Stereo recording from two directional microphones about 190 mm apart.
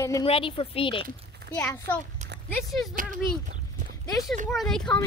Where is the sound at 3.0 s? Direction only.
45° right (ahead or behind).